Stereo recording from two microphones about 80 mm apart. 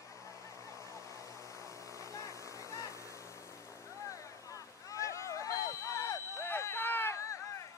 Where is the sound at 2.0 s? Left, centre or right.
Left.